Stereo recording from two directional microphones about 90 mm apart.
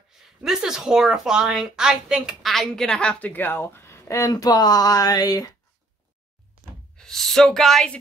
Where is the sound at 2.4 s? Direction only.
Centre (ahead or behind); by 3.7 s 20° left (ahead or behind).